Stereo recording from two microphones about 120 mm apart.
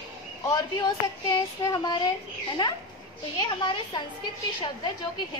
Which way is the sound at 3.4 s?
40° left (ahead or behind).